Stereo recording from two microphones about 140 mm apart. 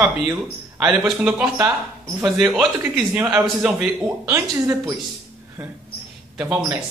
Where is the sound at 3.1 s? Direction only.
20° right (ahead or behind).